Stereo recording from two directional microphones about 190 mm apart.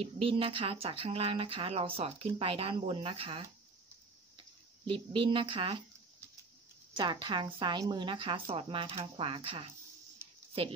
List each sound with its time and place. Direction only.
0.0 s speech: 30° right (ahead or behind)
7.0 s speech: 25° right (ahead or behind)